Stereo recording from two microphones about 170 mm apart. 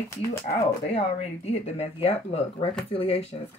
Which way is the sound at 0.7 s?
40° left (ahead or behind).